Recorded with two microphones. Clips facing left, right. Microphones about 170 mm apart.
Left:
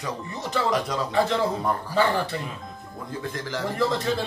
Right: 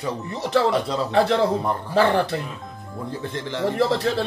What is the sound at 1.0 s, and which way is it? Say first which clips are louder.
Speech: right 5 dB; 70° right (ahead or behind).